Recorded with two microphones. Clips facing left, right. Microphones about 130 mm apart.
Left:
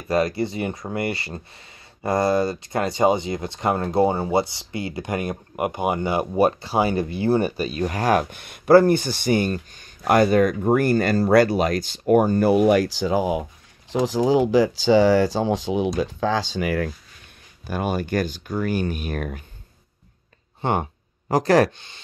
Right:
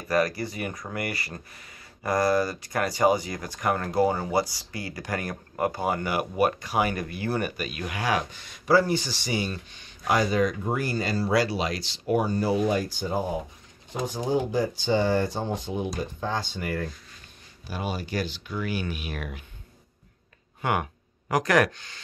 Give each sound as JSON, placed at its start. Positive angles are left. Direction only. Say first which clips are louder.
{"t": 0.1, "sound": "speech", "louder": "left 4 dB", "side_deg": 25}
{"t": 17.6, "sound": "speech", "louder": "left 7 dB", "side_deg": 50}
{"t": 20.6, "sound": "speech", "louder": "left 4 dB", "side_deg": 30}